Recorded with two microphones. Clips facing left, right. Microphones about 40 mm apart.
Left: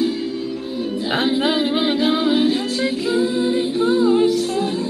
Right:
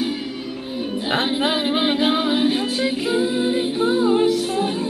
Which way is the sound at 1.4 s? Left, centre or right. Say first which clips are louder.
Left 1 dB; centre.